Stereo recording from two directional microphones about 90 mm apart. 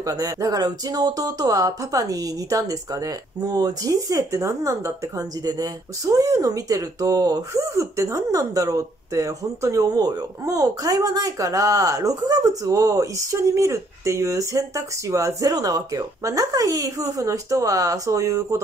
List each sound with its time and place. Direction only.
0.0 s speech: 40° right (ahead or behind)